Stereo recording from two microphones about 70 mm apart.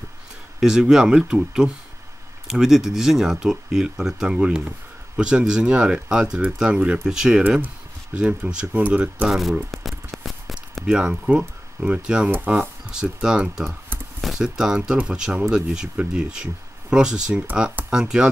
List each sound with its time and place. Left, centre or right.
0.6 s speech: centre
9.3 s speech: centre
9.7 s a sound: centre
10.9 s speech: centre